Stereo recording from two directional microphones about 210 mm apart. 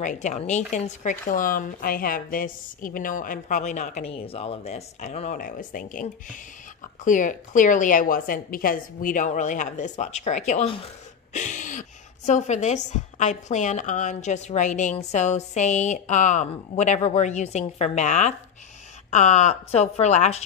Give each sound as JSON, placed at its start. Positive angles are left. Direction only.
{"t": 0.0, "sound": "a woman's voice", "side_deg": 35}
{"t": 7.1, "sound": "a woman's voice", "side_deg": 40}
{"t": 11.3, "sound": "a sound", "side_deg": 35}
{"t": 12.3, "sound": "a woman's voice", "side_deg": 35}